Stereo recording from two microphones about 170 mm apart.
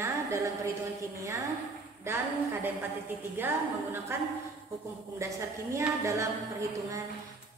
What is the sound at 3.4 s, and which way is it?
Speech, 15° right (ahead or behind).